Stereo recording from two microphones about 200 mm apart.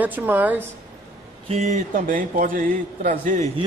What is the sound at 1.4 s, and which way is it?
A man's voice, 35° right (ahead or behind).